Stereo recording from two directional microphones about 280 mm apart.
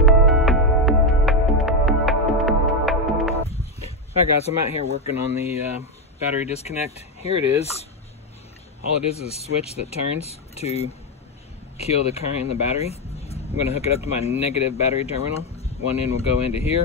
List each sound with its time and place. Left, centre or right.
0.0 s music: centre
3.3 s a sound: left
4.4 s speech: left
8.8 s speech: left